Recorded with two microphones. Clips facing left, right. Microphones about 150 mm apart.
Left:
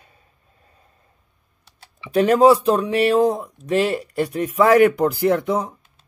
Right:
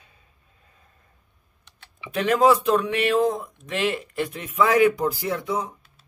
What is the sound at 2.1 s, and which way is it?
Speech, 35° left (ahead or behind).